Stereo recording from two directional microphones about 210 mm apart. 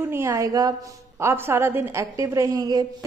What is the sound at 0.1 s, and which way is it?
A woman's voice, 15° right (ahead or behind).